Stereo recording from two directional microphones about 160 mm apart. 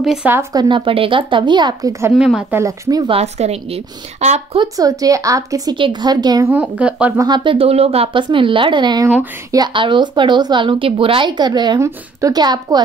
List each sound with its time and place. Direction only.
0.0 s speech: 5° right (ahead or behind)
0.3 s a woman's voice: 20° right (ahead or behind)
2.1 s a woman's voice: 5° right (ahead or behind)
2.6 s a woman's voice: 20° right (ahead or behind)
3.2 s speech: 40° right (ahead or behind)
4.6 s a woman's voice: 20° right (ahead or behind)
6.5 s speech: 5° right (ahead or behind)
7.2 s a woman's voice: 25° right (ahead or behind)